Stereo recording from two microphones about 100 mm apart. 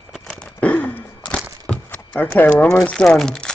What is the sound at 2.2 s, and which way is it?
Speech, 15° left (ahead or behind).